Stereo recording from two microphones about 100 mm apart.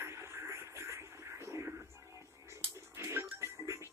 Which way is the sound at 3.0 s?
25° right (ahead or behind).